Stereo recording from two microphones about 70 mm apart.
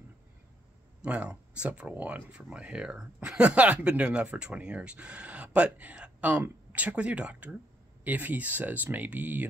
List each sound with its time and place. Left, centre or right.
1.0 s speech: centre